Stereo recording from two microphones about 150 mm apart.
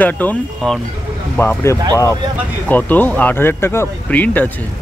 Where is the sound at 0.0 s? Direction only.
10° left (ahead or behind).